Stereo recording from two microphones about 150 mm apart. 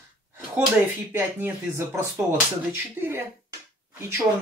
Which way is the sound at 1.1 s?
15° right (ahead or behind).